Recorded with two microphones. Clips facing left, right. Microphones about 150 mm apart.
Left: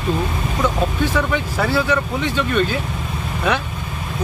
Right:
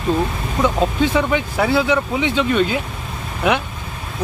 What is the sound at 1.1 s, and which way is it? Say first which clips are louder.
Speech: right 2 dB; 15° right (ahead or behind).